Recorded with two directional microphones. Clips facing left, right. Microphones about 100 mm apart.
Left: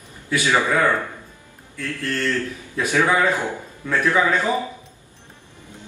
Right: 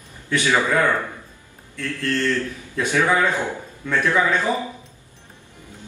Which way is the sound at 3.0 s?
15° left (ahead or behind).